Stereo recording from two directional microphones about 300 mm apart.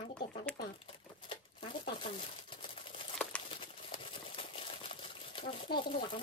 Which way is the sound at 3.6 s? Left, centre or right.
Centre.